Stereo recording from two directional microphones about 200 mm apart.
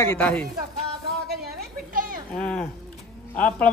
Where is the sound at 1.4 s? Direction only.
45° right (ahead or behind).